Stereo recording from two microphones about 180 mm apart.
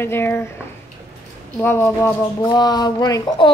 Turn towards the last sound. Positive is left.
turn(degrees=25)  # may be behind; listen again after turning